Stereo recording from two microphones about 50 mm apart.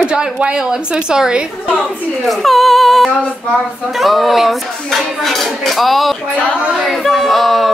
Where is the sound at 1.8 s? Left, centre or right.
Centre.